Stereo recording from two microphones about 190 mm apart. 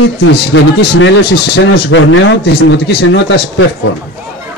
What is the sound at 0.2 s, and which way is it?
A man's voice, 80° left.